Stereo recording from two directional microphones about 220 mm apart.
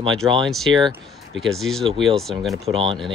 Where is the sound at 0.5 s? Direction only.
Centre (ahead or behind).